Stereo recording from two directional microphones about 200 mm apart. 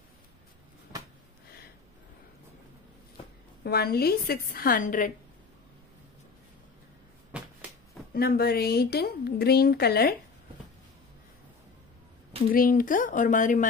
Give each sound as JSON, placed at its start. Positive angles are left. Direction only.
{"t": 3.6, "sound": "a woman's voice", "side_deg": 50}
{"t": 8.1, "sound": "a woman's voice", "side_deg": 50}
{"t": 12.5, "sound": "speech", "side_deg": 45}